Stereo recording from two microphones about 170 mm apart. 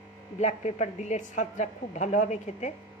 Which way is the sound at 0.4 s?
40° left (ahead or behind).